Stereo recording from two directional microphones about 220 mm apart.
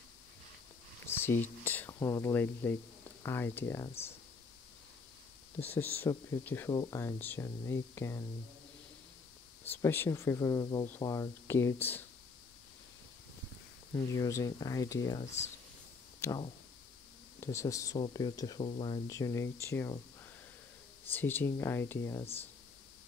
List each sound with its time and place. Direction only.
1.0 s a sound: 10° left (ahead or behind)
3.3 s speech: 10° left (ahead or behind)
5.7 s speech: 10° left (ahead or behind)
9.7 s speech: 10° left (ahead or behind)
14.1 s speech: 15° left (ahead or behind)
15.2 s speech: 30° left (ahead or behind)
16.2 s speech: 20° left (ahead or behind)
21.1 s speech: 10° left (ahead or behind)